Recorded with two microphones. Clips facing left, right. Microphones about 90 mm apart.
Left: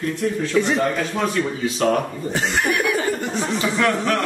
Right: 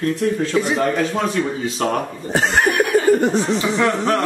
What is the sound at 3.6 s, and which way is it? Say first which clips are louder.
Speech: right 2 dB; 20° right (ahead or behind).